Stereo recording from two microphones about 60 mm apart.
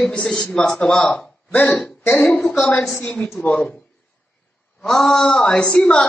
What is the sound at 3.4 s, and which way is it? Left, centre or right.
Speech, left.